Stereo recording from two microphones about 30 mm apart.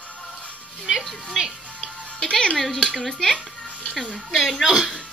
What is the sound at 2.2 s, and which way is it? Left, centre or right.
Music, left.